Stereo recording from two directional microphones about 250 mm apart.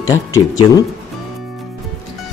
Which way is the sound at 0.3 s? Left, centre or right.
Centre.